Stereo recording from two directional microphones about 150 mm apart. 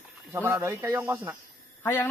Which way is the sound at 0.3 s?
20° right (ahead or behind).